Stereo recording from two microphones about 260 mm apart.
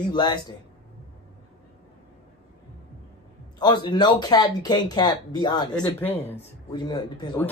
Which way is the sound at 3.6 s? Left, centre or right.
Centre.